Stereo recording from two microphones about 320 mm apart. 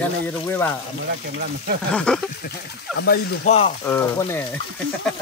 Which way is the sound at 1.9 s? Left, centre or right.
Centre.